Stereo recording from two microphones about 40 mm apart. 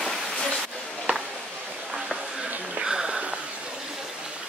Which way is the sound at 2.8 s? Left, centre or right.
Centre.